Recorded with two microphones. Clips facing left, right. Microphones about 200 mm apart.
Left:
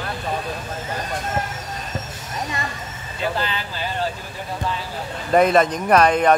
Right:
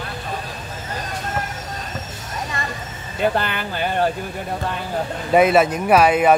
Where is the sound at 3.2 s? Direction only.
55° right (ahead or behind).